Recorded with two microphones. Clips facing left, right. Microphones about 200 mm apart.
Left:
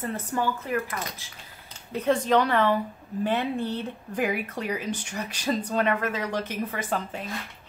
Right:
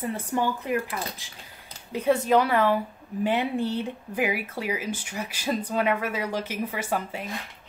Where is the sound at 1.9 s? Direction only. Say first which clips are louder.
Right 1 dB; 10° right (ahead or behind).